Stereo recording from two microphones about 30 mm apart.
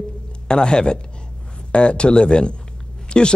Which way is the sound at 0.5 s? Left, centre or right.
Left.